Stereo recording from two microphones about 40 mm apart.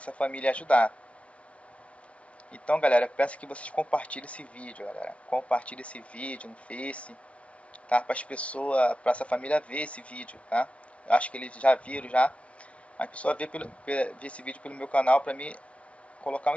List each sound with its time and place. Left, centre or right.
0.0 s speech: left
2.5 s speech: left